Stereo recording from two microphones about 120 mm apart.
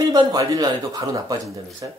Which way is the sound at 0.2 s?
30° right (ahead or behind).